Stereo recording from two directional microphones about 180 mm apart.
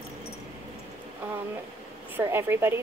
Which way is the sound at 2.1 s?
15° right (ahead or behind).